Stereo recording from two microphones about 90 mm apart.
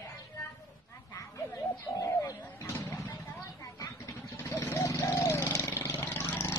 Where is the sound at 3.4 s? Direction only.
35° left (ahead or behind).